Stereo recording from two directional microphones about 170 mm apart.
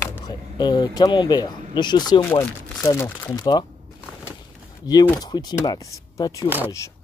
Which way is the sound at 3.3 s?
25° left (ahead or behind).